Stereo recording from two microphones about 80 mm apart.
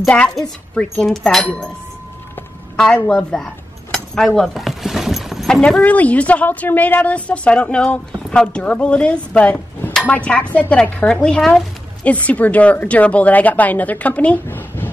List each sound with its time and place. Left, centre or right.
0.7 s speech: centre
2.7 s a woman's voice: centre
3.3 s cutlery: centre
4.4 s keys jangling: centre
5.6 s a woman's voice: centre
12.0 s a woman's voice: centre